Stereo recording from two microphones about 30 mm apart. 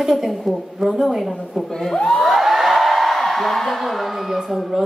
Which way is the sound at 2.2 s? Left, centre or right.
Centre.